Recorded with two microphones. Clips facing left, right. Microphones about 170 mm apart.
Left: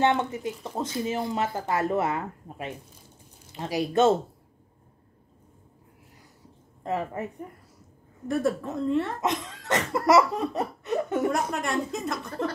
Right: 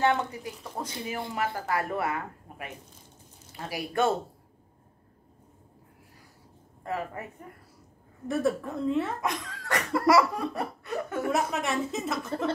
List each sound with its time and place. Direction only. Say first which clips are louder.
0.0 s cough: left 2 dB; 20° left (ahead or behind)
6.8 s cough: left 4 dB; 20° left (ahead or behind)
8.3 s a woman's voice: left 1 dB; centre (ahead or behind)
9.2 s cough: left 4 dB; 20° left (ahead or behind)
11.3 s a woman's voice: even; centre (ahead or behind)